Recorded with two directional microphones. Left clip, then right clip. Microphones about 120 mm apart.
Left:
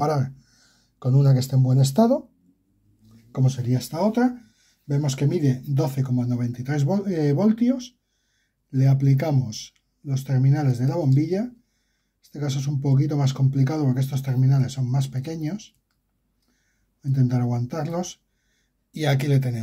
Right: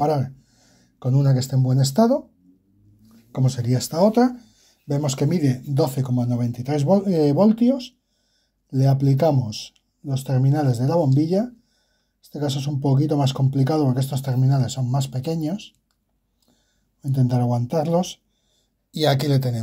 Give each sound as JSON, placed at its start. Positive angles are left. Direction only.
{"t": 0.0, "sound": "speech", "side_deg": -5}
{"t": 3.6, "sound": "speech", "side_deg": -45}
{"t": 17.1, "sound": "speech", "side_deg": -25}